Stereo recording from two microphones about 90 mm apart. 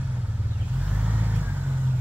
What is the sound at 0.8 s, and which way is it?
Vehicle, 15° right (ahead or behind).